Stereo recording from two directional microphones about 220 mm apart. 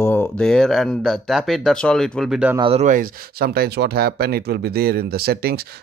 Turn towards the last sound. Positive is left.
turn(degrees=-45)  # may be behind; listen again after turning